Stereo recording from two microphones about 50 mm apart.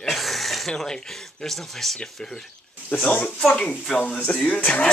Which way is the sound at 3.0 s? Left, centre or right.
Left.